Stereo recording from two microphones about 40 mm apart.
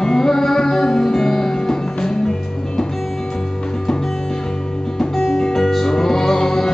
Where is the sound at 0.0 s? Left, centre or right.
Centre.